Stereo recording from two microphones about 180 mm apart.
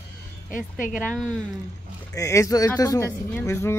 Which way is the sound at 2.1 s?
20° left (ahead or behind).